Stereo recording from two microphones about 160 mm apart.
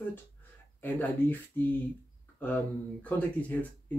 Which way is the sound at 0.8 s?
10° left (ahead or behind).